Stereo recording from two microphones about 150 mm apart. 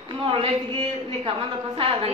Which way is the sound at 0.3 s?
35° right (ahead or behind).